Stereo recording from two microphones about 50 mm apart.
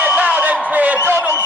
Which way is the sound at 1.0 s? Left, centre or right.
Right.